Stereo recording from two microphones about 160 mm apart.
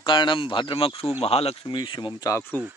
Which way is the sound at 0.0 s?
30° left (ahead or behind).